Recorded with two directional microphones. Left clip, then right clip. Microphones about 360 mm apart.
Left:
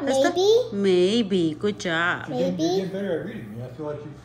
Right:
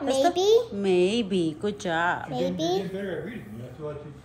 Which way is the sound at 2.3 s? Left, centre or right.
Centre.